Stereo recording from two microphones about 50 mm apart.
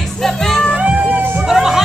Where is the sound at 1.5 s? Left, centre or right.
Centre.